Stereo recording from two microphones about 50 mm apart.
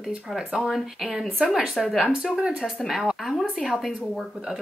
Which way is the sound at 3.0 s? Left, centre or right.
Centre.